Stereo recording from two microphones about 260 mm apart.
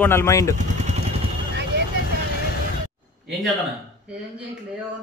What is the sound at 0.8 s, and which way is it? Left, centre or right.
Vehicle, right.